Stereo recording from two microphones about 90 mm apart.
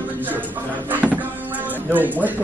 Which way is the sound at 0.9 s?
20° right (ahead or behind).